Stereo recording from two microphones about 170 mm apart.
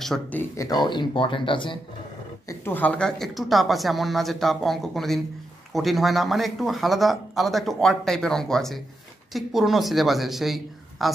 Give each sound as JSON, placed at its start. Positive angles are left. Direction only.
{"t": 0.0, "sound": "speech", "side_deg": 5}
{"t": 0.7, "sound": "speech", "side_deg": 25}
{"t": 2.4, "sound": "speech", "side_deg": 15}